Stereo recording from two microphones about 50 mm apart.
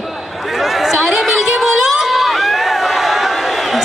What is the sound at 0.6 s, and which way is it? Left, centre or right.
Chatter, centre.